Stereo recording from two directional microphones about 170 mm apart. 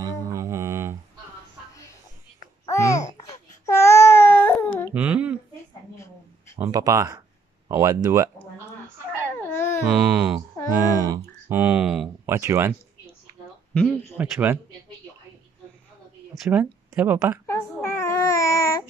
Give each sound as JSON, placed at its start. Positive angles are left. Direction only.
{"t": 0.0, "sound": "mantra", "side_deg": -20}
{"t": 2.6, "sound": "babbling", "side_deg": 20}
{"t": 3.3, "sound": "baby cry", "side_deg": 15}
{"t": 4.9, "sound": "a sound", "side_deg": -10}
{"t": 6.7, "sound": "speech", "side_deg": -20}
{"t": 9.1, "sound": "babbling", "side_deg": 10}
{"t": 9.9, "sound": "speech", "side_deg": -5}
{"t": 10.8, "sound": "speech", "side_deg": -15}
{"t": 11.5, "sound": "speech", "side_deg": -5}
{"t": 12.3, "sound": "speech", "side_deg": -15}
{"t": 13.7, "sound": "speech", "side_deg": 5}
{"t": 16.4, "sound": "speech", "side_deg": -10}
{"t": 17.5, "sound": "babbling", "side_deg": 15}